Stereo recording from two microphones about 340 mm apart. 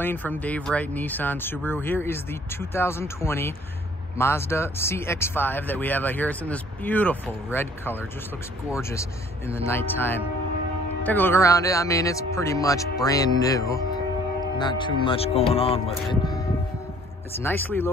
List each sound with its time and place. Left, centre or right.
0.0 s speech: centre
9.5 s speech: centre